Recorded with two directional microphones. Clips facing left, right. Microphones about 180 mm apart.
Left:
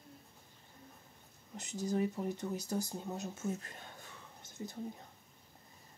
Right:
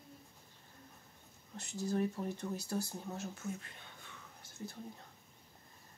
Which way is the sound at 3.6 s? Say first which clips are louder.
Left 4 dB; 40° left (ahead or behind).